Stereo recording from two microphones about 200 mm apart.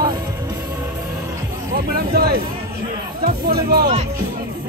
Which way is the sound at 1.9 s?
50° right (ahead or behind).